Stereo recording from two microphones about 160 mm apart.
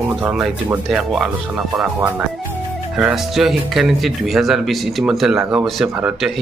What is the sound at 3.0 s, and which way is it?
A man's voice, 5° right (ahead or behind).